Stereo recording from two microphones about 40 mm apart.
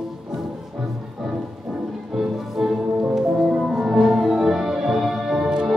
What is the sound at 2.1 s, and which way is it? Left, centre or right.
Music, centre.